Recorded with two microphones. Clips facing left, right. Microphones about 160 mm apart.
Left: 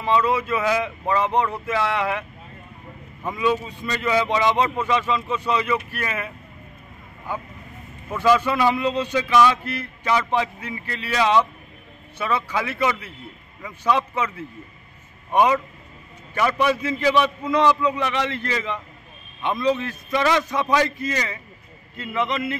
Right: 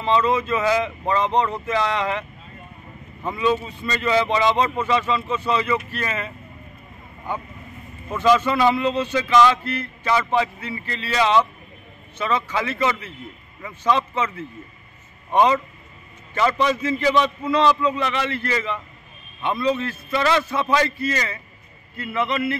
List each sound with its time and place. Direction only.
0.0 s a man's voice: 10° left (ahead or behind)
3.3 s a man's voice: 10° left (ahead or behind)
8.1 s a man's voice: 10° left (ahead or behind)